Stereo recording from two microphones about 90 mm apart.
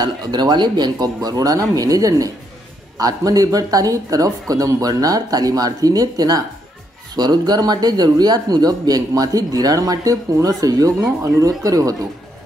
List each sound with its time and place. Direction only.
0.0 s speech: 50° right (ahead or behind)